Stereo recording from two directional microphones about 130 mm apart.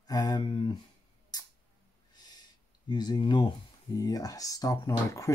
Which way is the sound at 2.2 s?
30° left (ahead or behind).